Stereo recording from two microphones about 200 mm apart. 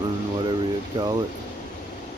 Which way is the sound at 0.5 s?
20° right (ahead or behind).